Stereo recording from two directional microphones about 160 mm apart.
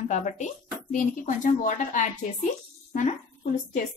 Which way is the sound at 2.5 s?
45° left (ahead or behind).